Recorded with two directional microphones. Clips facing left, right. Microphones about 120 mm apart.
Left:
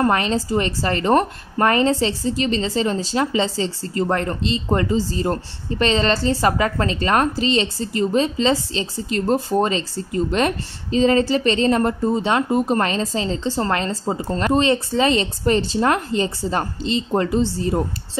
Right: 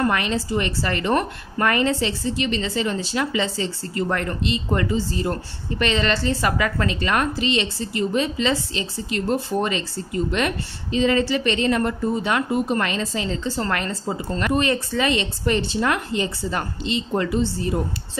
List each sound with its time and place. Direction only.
0.0 s a woman's voice: 35° left (ahead or behind)